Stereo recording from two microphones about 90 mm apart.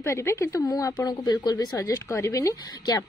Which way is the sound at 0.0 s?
30° left (ahead or behind).